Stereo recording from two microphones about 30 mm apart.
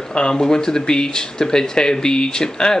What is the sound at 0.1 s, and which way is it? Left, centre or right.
Speech, left.